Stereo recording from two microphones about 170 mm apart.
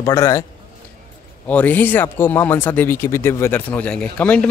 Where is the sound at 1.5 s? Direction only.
10° left (ahead or behind).